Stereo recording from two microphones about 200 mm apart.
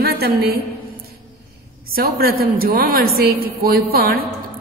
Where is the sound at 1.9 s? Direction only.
50° right (ahead or behind).